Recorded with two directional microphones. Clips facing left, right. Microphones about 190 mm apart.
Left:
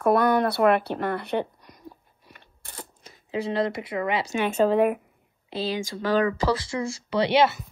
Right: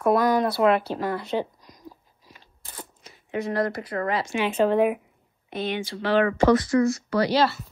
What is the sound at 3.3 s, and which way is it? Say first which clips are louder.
Speech: even; 30° left (ahead or behind).